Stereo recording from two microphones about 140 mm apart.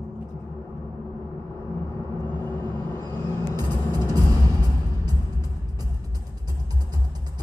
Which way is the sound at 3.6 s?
30° right (ahead or behind).